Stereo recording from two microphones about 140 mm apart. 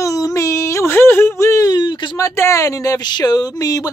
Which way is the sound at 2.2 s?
20° left (ahead or behind).